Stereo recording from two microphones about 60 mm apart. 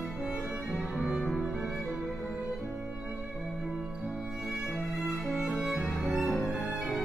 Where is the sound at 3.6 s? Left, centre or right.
Centre.